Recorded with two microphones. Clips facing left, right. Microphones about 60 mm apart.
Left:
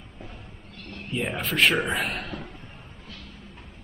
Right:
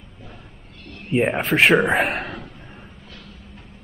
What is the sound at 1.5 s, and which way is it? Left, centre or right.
Speech, right.